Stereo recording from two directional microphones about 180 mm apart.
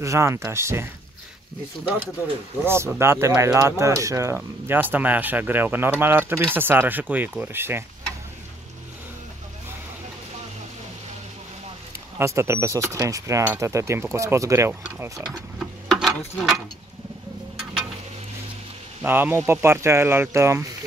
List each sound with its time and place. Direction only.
0.0 s speech: 15° right (ahead or behind)
2.6 s speech: 15° right (ahead or behind)
12.2 s speech: 15° right (ahead or behind)
15.2 s tick-tock: centre (ahead or behind)
19.0 s speech: 10° right (ahead or behind)